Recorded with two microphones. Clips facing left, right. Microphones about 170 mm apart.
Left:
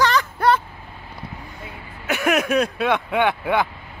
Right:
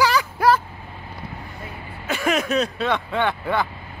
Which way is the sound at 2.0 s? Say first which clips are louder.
Left 2 dB; 10° left (ahead or behind).